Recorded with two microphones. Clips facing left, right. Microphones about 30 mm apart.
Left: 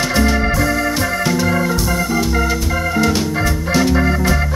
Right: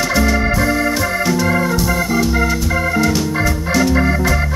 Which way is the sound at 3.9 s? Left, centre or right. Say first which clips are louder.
Right 1 dB; centre.